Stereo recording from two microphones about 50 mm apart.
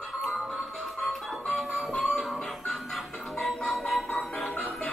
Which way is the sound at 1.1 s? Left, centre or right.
Centre.